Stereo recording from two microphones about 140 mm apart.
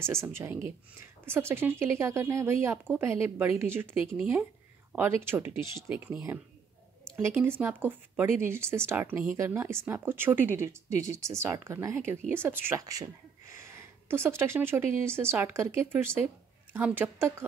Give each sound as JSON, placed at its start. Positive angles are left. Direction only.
{"t": 0.0, "sound": "speech", "side_deg": -20}